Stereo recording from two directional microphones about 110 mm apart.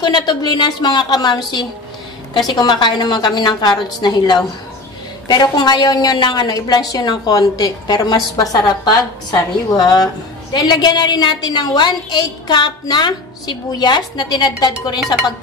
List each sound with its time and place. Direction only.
0.0 s a woman's voice: 40° left (ahead or behind)
2.4 s a woman's voice: 40° left (ahead or behind)